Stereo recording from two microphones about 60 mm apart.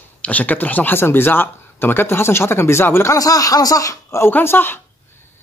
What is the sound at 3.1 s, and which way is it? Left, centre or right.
Speech, left.